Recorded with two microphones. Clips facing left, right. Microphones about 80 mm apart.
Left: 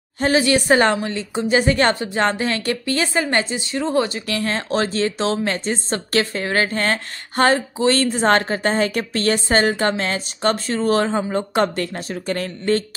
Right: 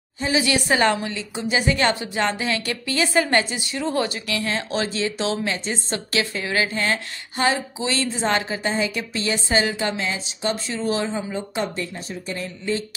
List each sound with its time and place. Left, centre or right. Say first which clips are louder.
0.4 s a woman's voice: left 3 dB; left
3.1 s a woman's voice: even; left
4.4 s a woman's voice: left 4 dB; left